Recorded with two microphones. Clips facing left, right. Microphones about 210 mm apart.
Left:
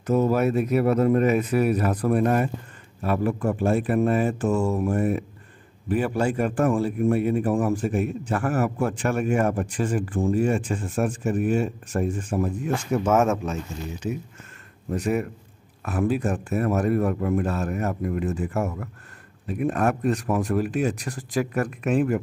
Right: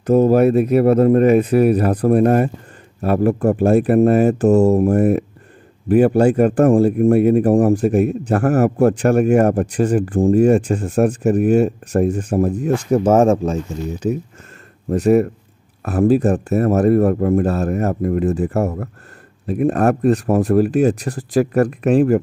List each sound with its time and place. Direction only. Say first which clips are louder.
0.0 s a man's voice: right 8 dB; 35° right (ahead or behind)
3.7 s speech: right 10 dB; 60° right (ahead or behind)
4.1 s a man's voice: right 9 dB; 40° right (ahead or behind)
6.8 s a man's voice: right 9 dB; 50° right (ahead or behind)
11.9 s a man's voice: right 8 dB; 40° right (ahead or behind)